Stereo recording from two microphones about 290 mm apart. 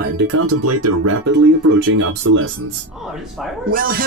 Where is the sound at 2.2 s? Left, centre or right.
Right.